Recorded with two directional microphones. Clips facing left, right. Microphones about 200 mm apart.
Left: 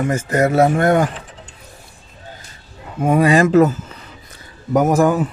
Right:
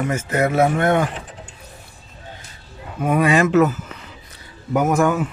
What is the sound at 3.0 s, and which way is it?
Speech, 30° left (ahead or behind).